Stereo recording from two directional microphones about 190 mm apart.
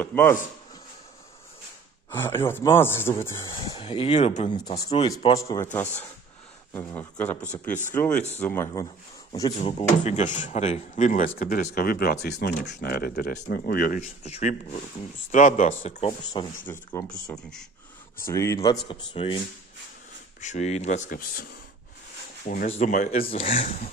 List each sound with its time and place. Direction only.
0.0 s speech: 10° left (ahead or behind)
2.0 s speech: 10° left (ahead or behind)
3.7 s speech: 30° left (ahead or behind)
4.5 s speech: 25° left (ahead or behind)
5.4 s speech: 15° left (ahead or behind)
9.6 s speech: 35° left (ahead or behind)
16.3 s speech: 25° left (ahead or behind)
16.9 s speech: 5° left (ahead or behind)
18.2 s speech: 15° left (ahead or behind)
20.3 s speech: 40° left (ahead or behind)
22.7 s speech: 40° left (ahead or behind)
23.2 s speech: 30° left (ahead or behind)